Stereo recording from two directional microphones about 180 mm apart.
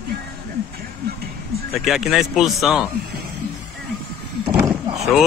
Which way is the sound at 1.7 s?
Centre (ahead or behind).